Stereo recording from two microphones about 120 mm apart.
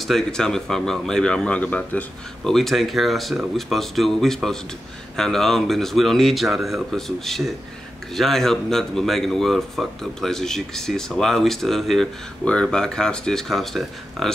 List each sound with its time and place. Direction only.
0.0 s speech: 5° left (ahead or behind)